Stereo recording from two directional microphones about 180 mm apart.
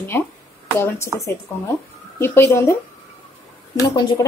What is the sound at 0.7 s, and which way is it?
A woman's voice, 15° left (ahead or behind).